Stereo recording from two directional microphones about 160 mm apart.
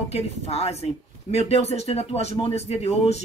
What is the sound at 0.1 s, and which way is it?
Speech, 40° left (ahead or behind).